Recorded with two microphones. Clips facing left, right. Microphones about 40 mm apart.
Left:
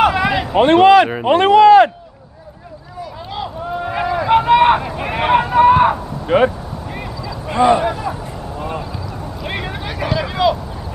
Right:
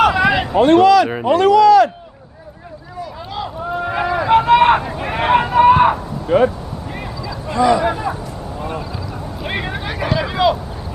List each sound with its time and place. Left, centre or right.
0.0 s a sound: centre
0.6 s speech: left
3.0 s vehicle: centre
4.8 s a sound: centre
6.2 s speech: left
6.9 s a sound: centre
7.5 s speech: left
7.8 s speech: centre
9.4 s boat: centre